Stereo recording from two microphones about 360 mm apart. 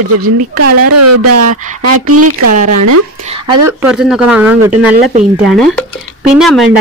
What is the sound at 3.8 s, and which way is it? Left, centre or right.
Speech, centre.